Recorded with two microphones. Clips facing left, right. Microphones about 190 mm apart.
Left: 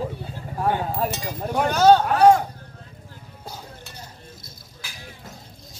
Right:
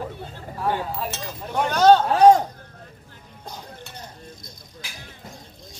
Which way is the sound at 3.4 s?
5° left (ahead or behind).